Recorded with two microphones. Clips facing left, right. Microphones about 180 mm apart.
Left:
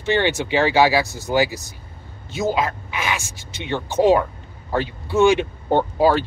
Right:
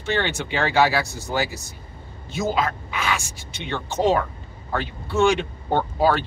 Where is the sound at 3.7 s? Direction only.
15° left (ahead or behind).